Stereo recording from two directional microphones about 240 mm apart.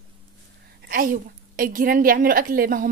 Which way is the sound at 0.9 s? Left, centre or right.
Right.